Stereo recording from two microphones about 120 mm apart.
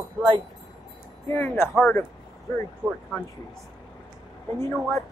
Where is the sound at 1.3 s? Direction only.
20° left (ahead or behind).